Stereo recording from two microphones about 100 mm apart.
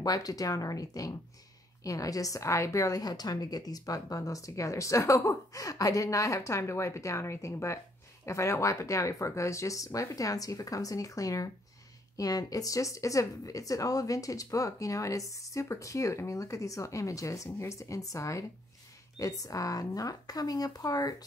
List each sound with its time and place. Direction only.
0.0 s a woman's voice: 40° left (ahead or behind)